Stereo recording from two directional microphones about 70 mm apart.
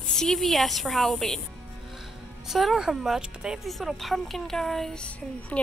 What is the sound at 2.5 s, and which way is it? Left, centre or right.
Speech, centre.